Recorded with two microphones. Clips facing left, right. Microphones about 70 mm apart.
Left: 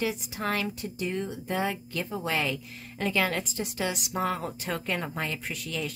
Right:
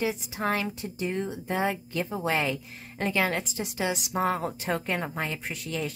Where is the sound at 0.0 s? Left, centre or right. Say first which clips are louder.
Right 2 dB; right.